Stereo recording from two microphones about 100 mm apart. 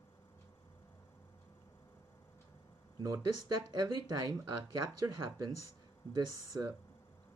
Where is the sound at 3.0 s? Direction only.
40° right (ahead or behind).